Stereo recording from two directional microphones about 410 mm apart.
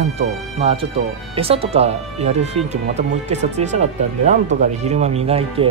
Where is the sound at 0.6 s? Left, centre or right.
Centre.